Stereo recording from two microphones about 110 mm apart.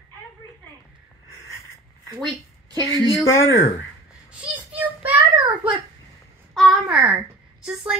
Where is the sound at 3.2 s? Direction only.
25° left (ahead or behind).